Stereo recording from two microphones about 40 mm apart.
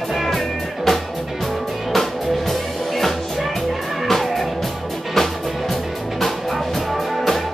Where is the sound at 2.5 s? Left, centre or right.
Centre.